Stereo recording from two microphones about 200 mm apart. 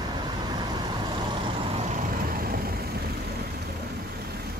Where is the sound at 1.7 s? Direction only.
35° right (ahead or behind).